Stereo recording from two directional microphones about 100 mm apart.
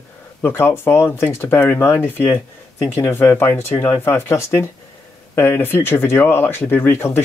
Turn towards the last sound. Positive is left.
turn(degrees=20)  # may be behind; listen again after turning